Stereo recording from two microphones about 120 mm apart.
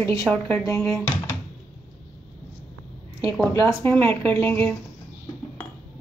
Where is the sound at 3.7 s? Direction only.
20° left (ahead or behind).